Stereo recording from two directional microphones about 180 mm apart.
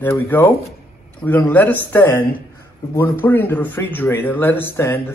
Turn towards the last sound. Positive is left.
turn(degrees=15)  # may be behind; listen again after turning